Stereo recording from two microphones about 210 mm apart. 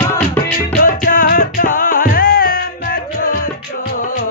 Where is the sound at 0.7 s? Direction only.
40° left (ahead or behind).